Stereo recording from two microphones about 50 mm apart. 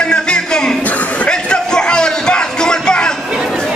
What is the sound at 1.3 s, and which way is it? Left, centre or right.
Music, centre.